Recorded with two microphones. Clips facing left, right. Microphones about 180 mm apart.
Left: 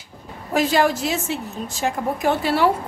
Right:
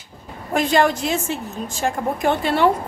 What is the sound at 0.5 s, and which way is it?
A woman's voice, 5° left (ahead or behind).